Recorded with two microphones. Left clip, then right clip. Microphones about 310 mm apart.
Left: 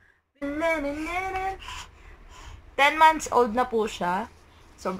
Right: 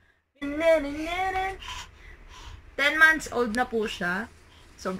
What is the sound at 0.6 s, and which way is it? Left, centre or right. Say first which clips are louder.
Speech: right 4 dB; centre.